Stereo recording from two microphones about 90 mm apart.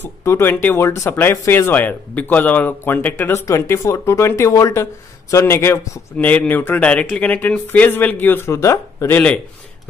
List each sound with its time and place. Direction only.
0.0 s speech: 30° left (ahead or behind)
6.1 s speech: 15° left (ahead or behind)
8.5 s speech: 35° left (ahead or behind)
9.1 s speech: 15° left (ahead or behind)